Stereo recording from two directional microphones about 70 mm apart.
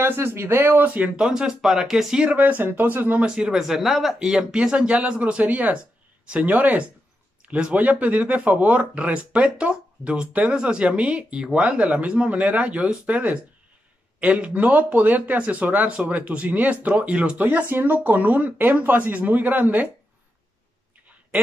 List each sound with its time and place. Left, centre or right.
0.0 s speech: right
3.3 s speech: centre; by 19.9 s right